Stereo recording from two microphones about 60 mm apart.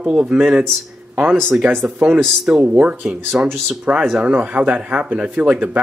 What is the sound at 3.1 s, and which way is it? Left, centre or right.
Speech, centre.